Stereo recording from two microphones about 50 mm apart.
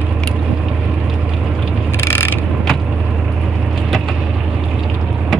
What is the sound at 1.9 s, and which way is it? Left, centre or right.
Mechanisms, left.